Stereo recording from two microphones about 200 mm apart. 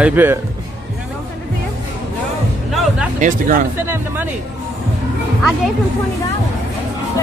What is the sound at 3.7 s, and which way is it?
Speech, 10° right (ahead or behind).